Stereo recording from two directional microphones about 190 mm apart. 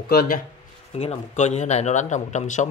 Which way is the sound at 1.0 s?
35° left (ahead or behind).